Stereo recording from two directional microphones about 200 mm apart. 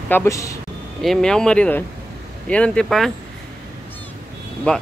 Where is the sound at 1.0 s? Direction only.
Centre (ahead or behind).